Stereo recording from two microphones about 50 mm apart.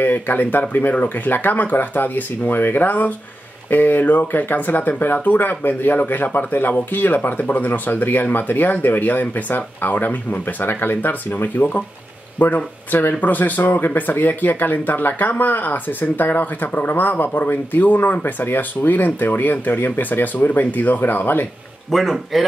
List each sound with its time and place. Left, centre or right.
0.0 s speech: left
21.9 s speech: centre